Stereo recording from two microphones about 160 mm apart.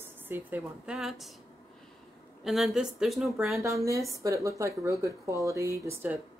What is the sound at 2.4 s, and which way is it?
A woman's voice, centre (ahead or behind).